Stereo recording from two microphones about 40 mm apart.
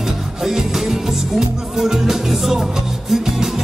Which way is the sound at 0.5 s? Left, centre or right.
Centre.